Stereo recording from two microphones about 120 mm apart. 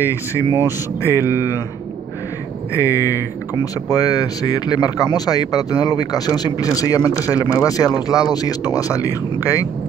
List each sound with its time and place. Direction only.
0.0 s speech: 25° left (ahead or behind)
0.5 s speech: 20° right (ahead or behind)
1.0 s speech: 25° left (ahead or behind)
2.7 s speech: 25° left (ahead or behind)